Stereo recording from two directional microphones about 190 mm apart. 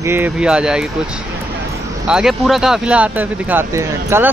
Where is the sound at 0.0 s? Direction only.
10° right (ahead or behind).